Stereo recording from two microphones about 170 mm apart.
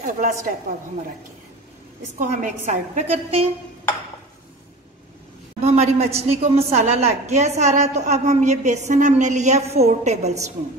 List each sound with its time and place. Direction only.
0.0 s a woman's voice: 50° right (ahead or behind)
2.1 s a woman's voice: 45° right (ahead or behind)
5.6 s a woman's voice: 40° right (ahead or behind)